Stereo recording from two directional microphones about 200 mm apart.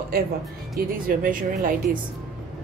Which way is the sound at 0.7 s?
45° right (ahead or behind).